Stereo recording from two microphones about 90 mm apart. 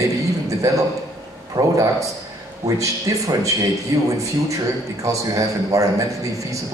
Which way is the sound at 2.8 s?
35° right (ahead or behind).